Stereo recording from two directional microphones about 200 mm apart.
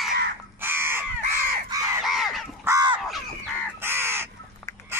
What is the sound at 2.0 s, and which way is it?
Crow, centre (ahead or behind).